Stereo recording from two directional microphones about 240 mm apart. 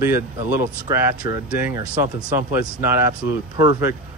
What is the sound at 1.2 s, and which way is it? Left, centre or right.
Speech, left.